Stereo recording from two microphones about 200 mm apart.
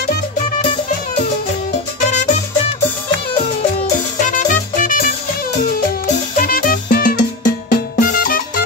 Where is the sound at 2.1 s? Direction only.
35° left (ahead or behind).